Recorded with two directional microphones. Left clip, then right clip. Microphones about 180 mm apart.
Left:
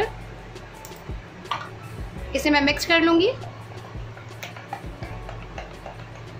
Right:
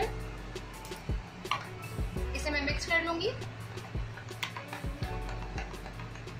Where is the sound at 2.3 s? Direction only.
55° left (ahead or behind).